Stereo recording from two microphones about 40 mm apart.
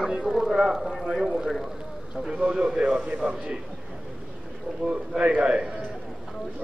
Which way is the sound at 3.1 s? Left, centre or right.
Right.